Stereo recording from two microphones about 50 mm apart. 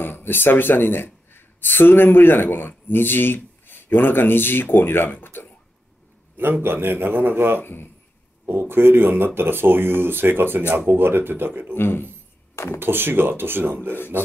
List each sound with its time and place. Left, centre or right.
0.0 s speech: left
6.3 s speech: right
7.6 s speech: left
8.5 s speech: right
11.7 s speech: left
12.7 s speech: right